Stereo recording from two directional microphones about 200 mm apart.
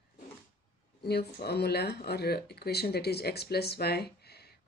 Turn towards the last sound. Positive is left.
turn(degrees=55)  # may be behind; listen again after turning